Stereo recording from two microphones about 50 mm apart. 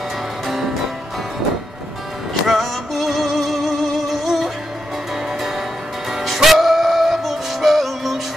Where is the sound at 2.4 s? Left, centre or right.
Centre.